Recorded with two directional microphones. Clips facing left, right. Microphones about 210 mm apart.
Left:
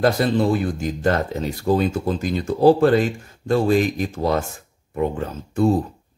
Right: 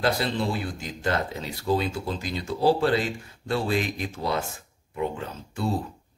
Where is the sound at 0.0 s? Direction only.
50° left (ahead or behind).